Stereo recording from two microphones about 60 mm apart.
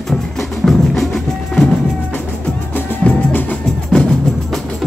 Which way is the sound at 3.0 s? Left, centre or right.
Left.